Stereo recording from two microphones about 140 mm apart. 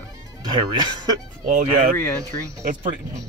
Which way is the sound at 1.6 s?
70° right (ahead or behind).